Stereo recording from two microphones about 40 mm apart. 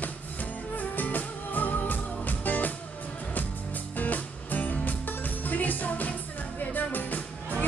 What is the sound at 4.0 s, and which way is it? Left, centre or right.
Music, left.